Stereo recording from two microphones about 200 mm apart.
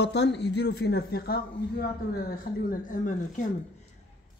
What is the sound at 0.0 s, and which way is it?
Speech, 60° left (ahead or behind).